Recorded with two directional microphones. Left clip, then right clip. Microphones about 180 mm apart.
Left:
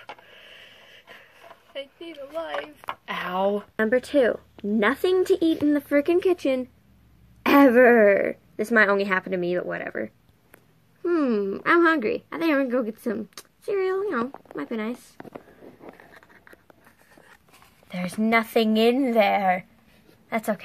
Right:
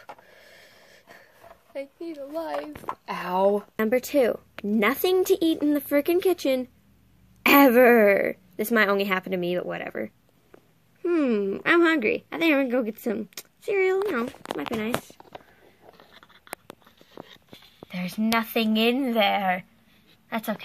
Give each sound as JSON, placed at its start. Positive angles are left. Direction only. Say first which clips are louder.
{"t": 3.1, "sound": "speech", "louder": "right 2 dB", "side_deg": -35}
{"t": 3.7, "sound": "speech", "louder": "left 1 dB", "side_deg": -15}
{"t": 17.8, "sound": "a woman's voice", "louder": "left 2 dB", "side_deg": 5}